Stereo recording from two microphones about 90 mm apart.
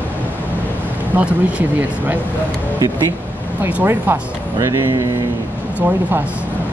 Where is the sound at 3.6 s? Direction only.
25° right (ahead or behind).